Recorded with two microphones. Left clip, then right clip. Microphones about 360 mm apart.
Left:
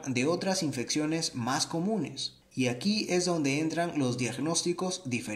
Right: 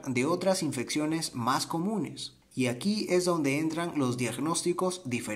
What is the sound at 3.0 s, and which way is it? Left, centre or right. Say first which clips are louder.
Speech: right 4 dB; right.